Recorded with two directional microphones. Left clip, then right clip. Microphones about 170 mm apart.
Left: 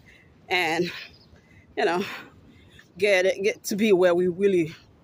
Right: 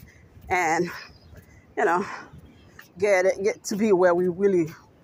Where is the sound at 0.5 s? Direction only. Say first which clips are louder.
Right 1 dB; 25° left (ahead or behind).